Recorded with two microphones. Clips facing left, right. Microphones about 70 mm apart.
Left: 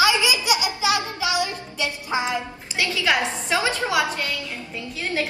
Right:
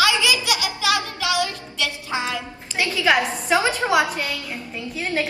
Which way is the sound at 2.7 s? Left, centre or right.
Centre.